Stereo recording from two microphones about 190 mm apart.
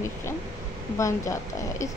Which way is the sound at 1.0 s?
15° left (ahead or behind).